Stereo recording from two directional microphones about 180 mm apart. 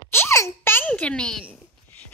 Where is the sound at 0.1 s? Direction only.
15° left (ahead or behind).